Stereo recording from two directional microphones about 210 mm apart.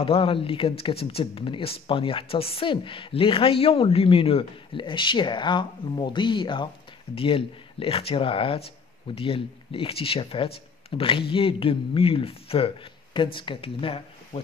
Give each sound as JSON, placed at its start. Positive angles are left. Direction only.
{"t": 0.0, "sound": "a woman's voice", "side_deg": 25}